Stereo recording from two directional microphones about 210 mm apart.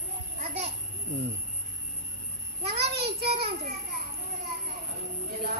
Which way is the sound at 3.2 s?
30° right (ahead or behind).